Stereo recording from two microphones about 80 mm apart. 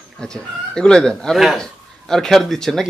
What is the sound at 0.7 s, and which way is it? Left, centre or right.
Speech, centre.